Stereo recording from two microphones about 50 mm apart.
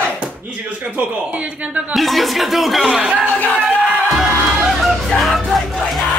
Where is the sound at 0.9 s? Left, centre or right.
Right.